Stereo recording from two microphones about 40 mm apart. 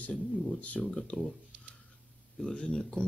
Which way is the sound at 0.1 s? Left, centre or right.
Centre.